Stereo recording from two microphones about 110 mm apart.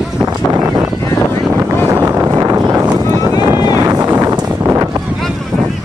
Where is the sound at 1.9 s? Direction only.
25° right (ahead or behind).